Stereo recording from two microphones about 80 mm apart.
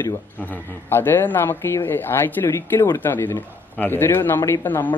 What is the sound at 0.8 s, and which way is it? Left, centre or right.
Speech, left.